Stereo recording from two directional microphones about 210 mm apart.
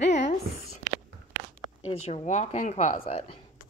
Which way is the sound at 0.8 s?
35° right (ahead or behind).